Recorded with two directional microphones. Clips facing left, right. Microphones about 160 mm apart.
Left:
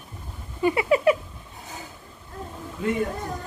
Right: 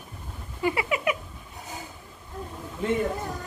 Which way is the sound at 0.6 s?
25° left (ahead or behind).